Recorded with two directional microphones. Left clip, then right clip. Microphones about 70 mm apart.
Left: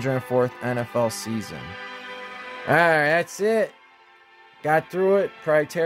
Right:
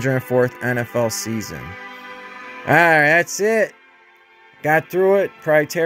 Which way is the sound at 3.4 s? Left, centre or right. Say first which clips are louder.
Right 4 dB; right.